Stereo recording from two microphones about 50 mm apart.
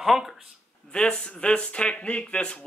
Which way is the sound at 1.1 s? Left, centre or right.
Left.